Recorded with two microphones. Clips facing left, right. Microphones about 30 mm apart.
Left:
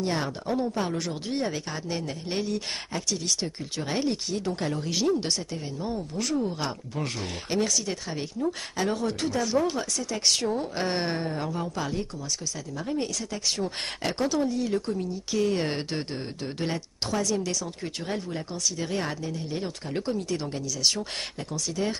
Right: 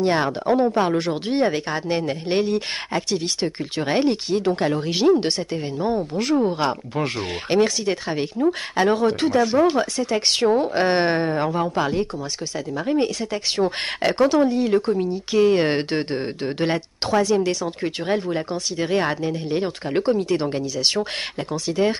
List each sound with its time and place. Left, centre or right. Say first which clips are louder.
0.0 s speech: right 9 dB; right